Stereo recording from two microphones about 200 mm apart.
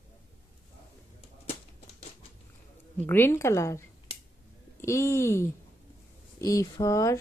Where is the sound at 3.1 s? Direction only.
10° left (ahead or behind).